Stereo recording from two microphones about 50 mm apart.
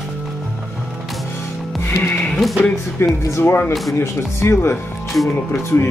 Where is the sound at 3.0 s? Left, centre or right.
Left.